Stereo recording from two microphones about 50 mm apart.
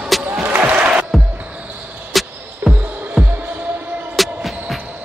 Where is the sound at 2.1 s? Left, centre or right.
Centre.